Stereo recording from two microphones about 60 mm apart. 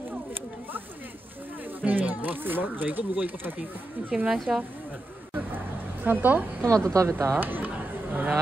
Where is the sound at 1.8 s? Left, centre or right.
Right.